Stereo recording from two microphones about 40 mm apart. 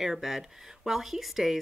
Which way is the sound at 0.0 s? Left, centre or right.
Centre.